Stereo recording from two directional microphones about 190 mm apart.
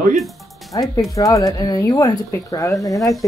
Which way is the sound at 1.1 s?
15° left (ahead or behind).